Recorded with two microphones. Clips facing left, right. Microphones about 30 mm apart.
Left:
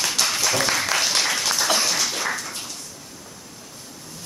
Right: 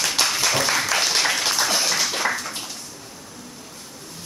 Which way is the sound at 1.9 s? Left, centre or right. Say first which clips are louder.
Right 2 dB; centre.